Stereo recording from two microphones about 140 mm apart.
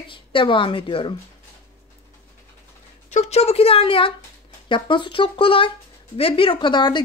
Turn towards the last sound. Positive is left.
turn(degrees=35)  # may be behind; listen again after turning